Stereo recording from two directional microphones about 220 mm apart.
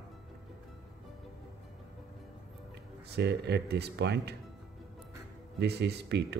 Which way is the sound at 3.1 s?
50° right (ahead or behind).